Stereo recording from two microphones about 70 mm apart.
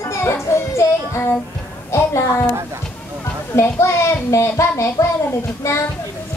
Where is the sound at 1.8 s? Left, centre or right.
Left.